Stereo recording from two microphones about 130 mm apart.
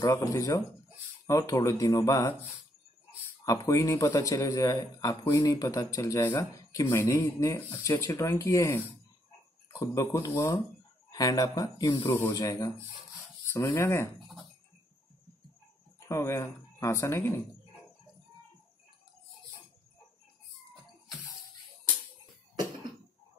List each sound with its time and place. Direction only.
0.0 s speech: 25° left (ahead or behind)
3.4 s speech: 25° left (ahead or behind)
16.1 s speech: 20° left (ahead or behind)